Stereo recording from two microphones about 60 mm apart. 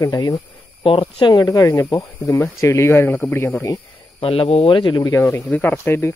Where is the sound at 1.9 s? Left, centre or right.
Left.